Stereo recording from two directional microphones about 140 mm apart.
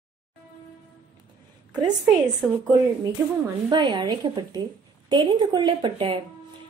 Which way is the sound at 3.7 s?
30° right (ahead or behind).